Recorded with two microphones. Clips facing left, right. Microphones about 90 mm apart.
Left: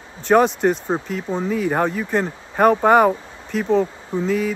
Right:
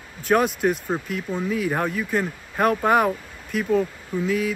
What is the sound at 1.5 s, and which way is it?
Speech, centre (ahead or behind).